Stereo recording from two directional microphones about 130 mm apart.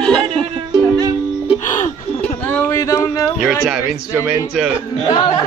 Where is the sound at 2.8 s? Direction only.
25° left (ahead or behind).